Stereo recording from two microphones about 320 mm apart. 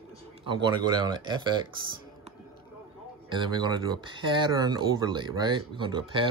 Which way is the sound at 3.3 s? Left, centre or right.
Centre.